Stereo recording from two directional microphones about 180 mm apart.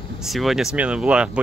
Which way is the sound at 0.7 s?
5° right (ahead or behind).